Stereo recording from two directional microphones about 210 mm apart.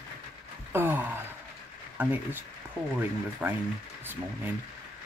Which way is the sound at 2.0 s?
10° right (ahead or behind).